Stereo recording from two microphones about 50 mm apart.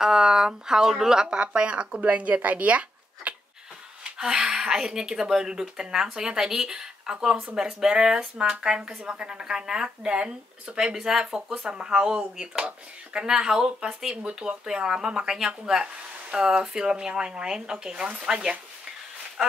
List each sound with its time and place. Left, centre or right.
0.0 s speech: centre
4.0 s speech: centre